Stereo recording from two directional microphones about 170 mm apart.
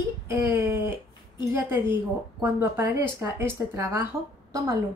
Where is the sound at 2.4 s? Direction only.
15° right (ahead or behind).